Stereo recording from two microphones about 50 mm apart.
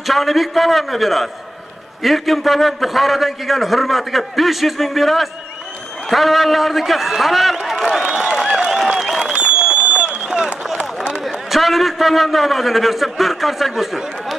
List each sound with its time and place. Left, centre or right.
0.0 s a man's voice: centre
7.8 s crowd: centre
9.2 s a sound: centre
11.2 s a man's voice: centre